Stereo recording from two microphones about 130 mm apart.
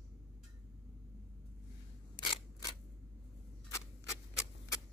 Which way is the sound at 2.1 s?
30° left (ahead or behind).